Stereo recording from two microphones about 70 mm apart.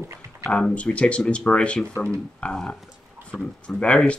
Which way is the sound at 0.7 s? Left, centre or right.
Centre.